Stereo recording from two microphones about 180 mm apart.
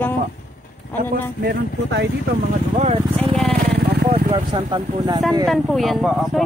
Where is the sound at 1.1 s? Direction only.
65° right (ahead or behind).